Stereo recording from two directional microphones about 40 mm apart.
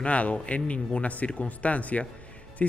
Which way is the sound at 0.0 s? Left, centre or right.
Left.